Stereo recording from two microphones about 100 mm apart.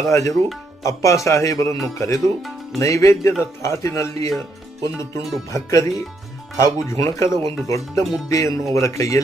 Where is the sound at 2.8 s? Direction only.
30° left (ahead or behind).